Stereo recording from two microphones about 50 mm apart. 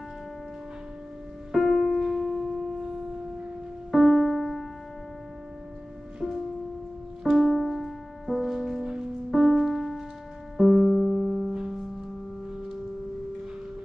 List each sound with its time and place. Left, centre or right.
1.5 s music: centre
3.9 s music: centre
6.2 s music: centre